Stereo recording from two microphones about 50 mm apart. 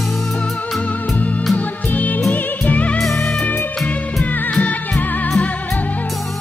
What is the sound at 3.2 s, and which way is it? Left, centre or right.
Music, centre.